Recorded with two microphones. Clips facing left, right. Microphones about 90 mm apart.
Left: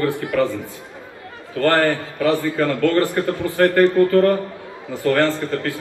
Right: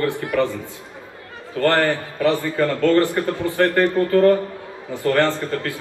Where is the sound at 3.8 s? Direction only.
20° right (ahead or behind).